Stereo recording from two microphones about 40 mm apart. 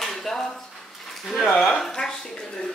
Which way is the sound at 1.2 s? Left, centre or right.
Centre.